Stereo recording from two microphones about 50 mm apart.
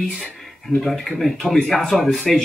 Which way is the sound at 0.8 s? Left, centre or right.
Centre.